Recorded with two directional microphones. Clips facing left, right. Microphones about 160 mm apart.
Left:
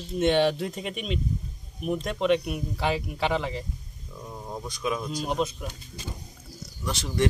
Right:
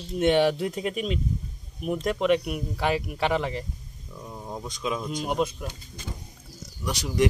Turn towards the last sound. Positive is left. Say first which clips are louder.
# right 2 dB
turn(degrees=-15)  # may be behind; listen again after turning